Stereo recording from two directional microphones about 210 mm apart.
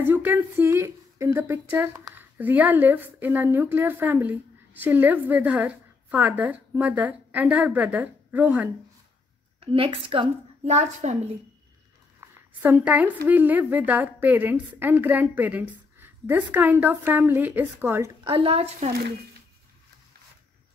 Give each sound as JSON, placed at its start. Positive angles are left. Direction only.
{"t": 0.0, "sound": "speech", "side_deg": -10}
{"t": 9.7, "sound": "a woman's voice", "side_deg": -25}
{"t": 12.6, "sound": "speech", "side_deg": -10}
{"t": 18.2, "sound": "a woman's voice", "side_deg": -25}